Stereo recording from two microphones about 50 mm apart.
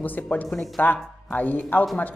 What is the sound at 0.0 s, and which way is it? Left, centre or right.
A woman's voice, left.